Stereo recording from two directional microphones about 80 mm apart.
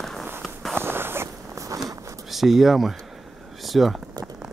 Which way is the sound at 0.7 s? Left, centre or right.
Right.